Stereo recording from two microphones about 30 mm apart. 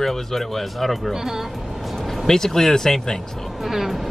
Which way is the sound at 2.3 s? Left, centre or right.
Centre.